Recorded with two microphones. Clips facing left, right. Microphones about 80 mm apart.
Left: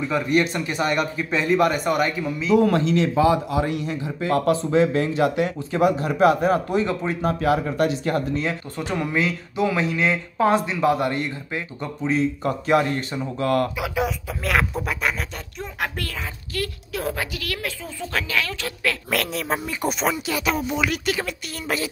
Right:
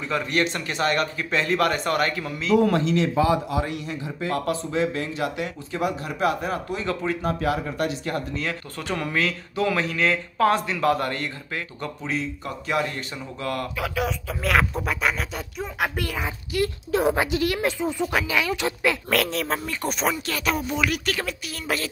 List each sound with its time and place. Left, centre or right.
0.0 s speech: centre
2.6 s speech: left
4.2 s speech: left
6.7 s speech: left
7.7 s speech: left
8.4 s speech: left
12.4 s speech: left
14.0 s speech: centre
16.0 s a child's voice: centre
19.0 s speech: centre